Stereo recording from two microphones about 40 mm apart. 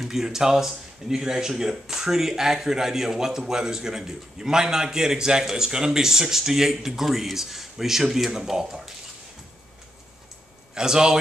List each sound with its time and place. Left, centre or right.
0.0 s a man's voice: centre
10.7 s a man's voice: centre